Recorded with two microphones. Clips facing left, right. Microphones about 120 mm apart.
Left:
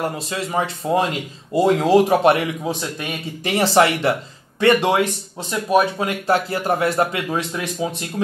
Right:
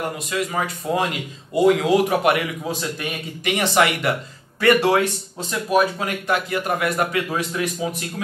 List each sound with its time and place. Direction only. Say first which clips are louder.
0.2 s speech: left 1 dB; 30° left (ahead or behind)
3.4 s speech: left 3 dB; 30° left (ahead or behind)
4.6 s speech: left 1 dB; 20° left (ahead or behind)